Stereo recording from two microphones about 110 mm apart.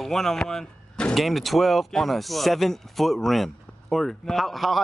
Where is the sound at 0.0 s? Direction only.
5° left (ahead or behind).